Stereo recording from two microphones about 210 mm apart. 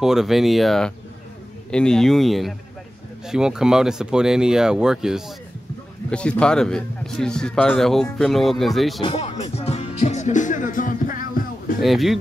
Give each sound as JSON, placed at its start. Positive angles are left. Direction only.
{"t": 0.0, "sound": "speech", "side_deg": 0}
{"t": 9.0, "sound": "music", "side_deg": 25}
{"t": 11.8, "sound": "speech", "side_deg": 0}